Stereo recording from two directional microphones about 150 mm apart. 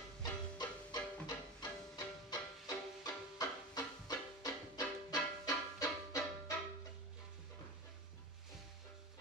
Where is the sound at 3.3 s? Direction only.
25° left (ahead or behind).